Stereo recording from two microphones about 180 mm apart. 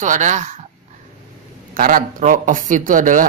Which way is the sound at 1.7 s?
50° right (ahead or behind).